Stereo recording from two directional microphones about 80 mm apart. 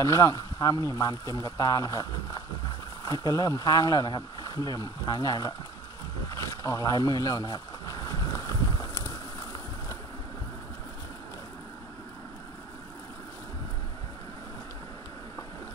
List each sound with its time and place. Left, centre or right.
0.0 s speech: left
3.1 s speech: left
6.3 s a sound: left